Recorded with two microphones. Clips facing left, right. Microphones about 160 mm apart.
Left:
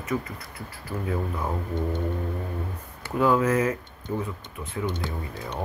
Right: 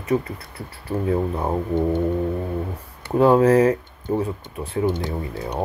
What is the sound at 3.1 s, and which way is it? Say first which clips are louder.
Speech: right 7 dB; 30° right (ahead or behind).